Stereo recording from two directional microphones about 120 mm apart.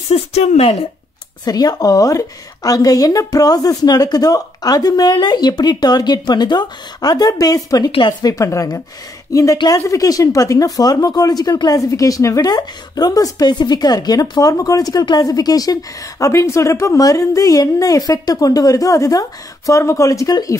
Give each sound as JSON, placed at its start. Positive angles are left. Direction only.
{"t": 0.1, "sound": "speech", "side_deg": 65}
{"t": 1.4, "sound": "speech", "side_deg": 30}